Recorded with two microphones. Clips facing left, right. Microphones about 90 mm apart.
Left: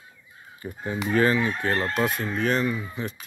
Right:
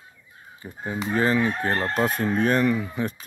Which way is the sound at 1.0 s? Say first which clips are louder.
Left 1 dB; 30° right (ahead or behind).